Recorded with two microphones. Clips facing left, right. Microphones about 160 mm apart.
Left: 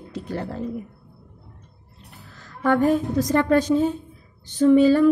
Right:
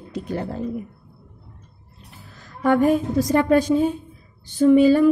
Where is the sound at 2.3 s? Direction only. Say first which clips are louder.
Right 2 dB; 15° right (ahead or behind).